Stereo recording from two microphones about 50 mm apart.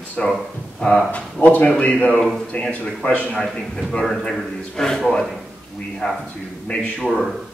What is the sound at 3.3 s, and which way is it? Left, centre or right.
A man's voice, centre.